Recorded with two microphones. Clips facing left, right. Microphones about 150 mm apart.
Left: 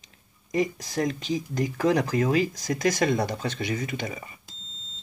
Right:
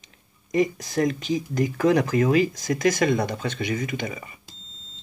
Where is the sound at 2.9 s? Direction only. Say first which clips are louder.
Right 2 dB; 35° left (ahead or behind).